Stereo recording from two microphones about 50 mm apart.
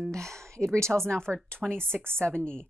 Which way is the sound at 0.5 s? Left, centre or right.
Centre.